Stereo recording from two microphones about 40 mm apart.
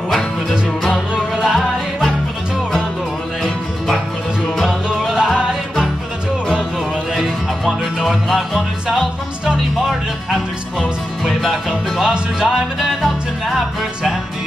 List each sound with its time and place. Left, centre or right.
1.1 s music: centre
4.8 s music: centre
7.2 s music: centre
11.2 s music: centre
12.1 s music: right
12.8 s music: centre